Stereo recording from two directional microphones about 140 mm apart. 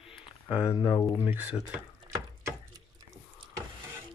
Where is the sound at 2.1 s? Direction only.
25° right (ahead or behind).